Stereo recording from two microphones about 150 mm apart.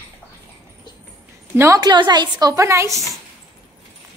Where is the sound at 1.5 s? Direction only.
20° right (ahead or behind).